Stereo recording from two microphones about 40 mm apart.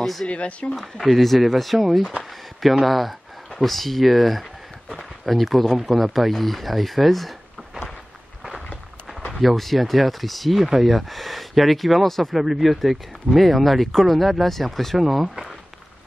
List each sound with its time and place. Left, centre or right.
0.0 s speech: centre
0.3 s speech: left
0.7 s speech: centre
9.3 s speech: centre